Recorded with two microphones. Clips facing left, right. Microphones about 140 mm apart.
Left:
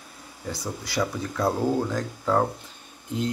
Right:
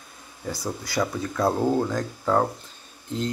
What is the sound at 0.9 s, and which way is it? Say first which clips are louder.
Speech: right 1 dB; centre (ahead or behind).